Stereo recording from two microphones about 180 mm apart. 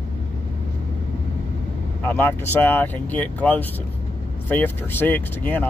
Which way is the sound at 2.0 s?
10° left (ahead or behind).